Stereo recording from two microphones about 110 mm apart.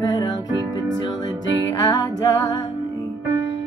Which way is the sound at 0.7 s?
40° left (ahead or behind).